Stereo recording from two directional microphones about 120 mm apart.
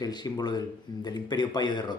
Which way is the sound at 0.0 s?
35° left (ahead or behind).